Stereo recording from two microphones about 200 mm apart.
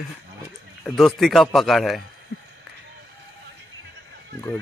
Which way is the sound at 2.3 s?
45° left (ahead or behind).